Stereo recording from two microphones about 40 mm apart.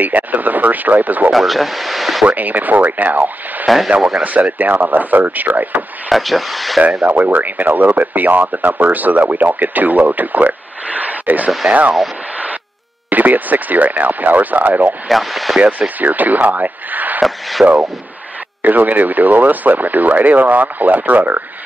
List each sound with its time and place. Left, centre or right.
0.0 s speech: right
1.3 s speech: centre
2.2 s speech: right
3.6 s speech: centre
3.9 s speech: right
4.2 s speech: right
6.0 s speech: centre
6.8 s speech: right
13.1 s speech: right
15.0 s speech: centre
16.0 s speech: right
17.2 s speech: centre
18.6 s speech: right